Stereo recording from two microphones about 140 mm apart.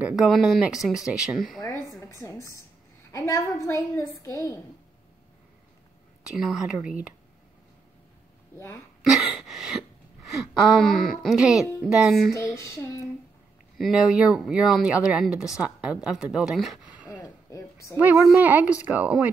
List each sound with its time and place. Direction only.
0.0 s speech: 5° right (ahead or behind)
1.6 s a sound: 25° left (ahead or behind)
3.1 s a woman's voice: 25° left (ahead or behind)
6.2 s speech: 5° right (ahead or behind)
8.5 s a woman's voice: 20° left (ahead or behind)
9.1 s a sound: centre (ahead or behind)
10.8 s speech: centre (ahead or behind)
13.7 s speech: centre (ahead or behind)
17.2 s a sound: 20° left (ahead or behind)
17.9 s speech: 10° right (ahead or behind)